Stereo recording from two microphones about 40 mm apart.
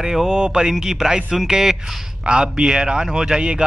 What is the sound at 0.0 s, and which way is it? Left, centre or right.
Speech, centre.